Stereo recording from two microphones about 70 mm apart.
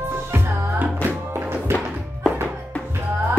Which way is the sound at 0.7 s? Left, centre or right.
Right.